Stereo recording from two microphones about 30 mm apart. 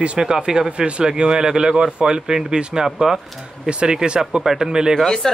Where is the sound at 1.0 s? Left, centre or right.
Right.